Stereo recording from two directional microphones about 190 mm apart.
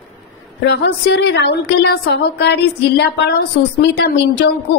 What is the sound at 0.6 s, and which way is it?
A woman's voice, 65° left (ahead or behind).